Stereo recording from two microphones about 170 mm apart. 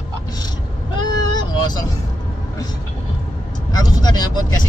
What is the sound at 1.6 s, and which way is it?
Speech, 25° left (ahead or behind).